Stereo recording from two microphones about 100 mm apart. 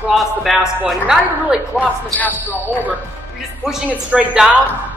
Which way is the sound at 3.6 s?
10° right (ahead or behind).